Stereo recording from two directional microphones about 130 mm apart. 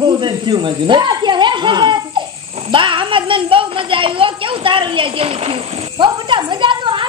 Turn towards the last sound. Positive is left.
turn(degrees=-40)  # may be behind; listen again after turning